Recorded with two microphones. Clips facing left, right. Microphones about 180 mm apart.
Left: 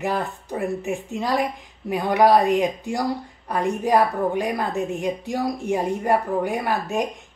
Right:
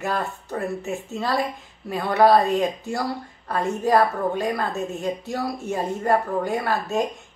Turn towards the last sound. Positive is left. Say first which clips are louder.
# even
turn(degrees=15)  # may be behind; listen again after turning